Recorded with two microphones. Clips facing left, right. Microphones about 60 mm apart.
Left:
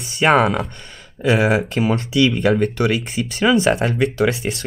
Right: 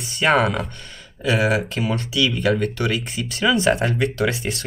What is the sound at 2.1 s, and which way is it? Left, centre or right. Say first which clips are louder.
Speech: left 4 dB; left.